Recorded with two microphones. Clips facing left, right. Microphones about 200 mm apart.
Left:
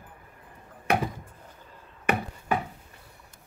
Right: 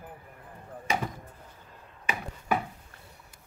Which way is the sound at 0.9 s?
60° left (ahead or behind).